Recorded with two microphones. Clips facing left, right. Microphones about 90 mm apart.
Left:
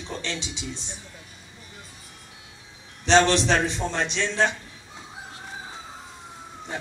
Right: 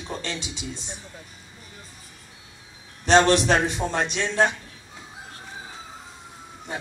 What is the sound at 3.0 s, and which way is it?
Speech, 50° right (ahead or behind).